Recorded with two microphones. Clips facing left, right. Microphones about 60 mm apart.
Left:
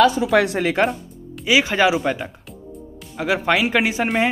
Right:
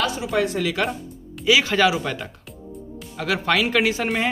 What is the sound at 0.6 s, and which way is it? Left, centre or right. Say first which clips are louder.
Speech: left 4 dB; left.